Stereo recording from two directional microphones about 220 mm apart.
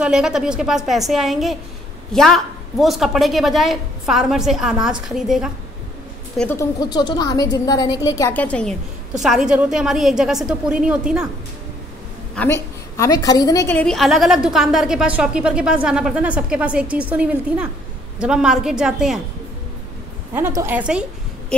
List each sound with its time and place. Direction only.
0.0 s a woman's voice: 5° right (ahead or behind)
12.4 s a woman's voice: 10° left (ahead or behind)
20.3 s a woman's voice: 10° right (ahead or behind)